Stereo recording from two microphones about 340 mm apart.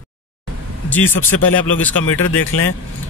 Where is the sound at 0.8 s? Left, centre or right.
Centre.